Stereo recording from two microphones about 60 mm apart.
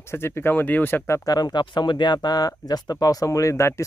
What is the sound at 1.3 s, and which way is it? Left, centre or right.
Speech, left.